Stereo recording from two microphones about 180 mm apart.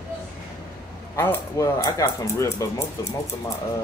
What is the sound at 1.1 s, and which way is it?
Speech, 15° left (ahead or behind).